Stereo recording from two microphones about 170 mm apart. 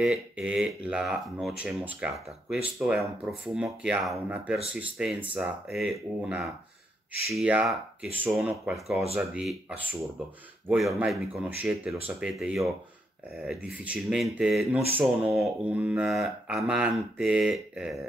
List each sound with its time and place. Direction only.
0.0 s speech: 5° right (ahead or behind)